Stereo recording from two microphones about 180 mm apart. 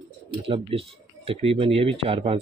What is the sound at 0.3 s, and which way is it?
Speech, 30° right (ahead or behind).